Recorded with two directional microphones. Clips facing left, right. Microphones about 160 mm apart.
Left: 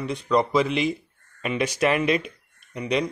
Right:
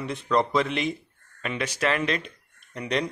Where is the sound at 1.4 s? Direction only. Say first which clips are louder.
Left 4 dB; 15° left (ahead or behind).